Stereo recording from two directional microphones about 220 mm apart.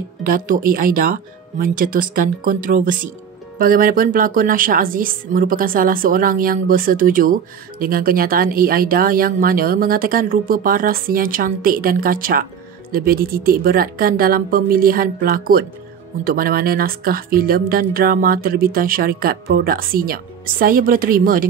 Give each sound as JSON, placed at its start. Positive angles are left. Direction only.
{"t": 0.2, "sound": "speech", "side_deg": -40}